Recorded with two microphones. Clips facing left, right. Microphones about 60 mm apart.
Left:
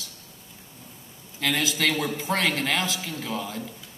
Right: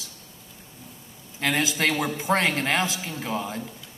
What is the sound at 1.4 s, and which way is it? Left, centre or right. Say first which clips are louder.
A man's voice: right 1 dB; right.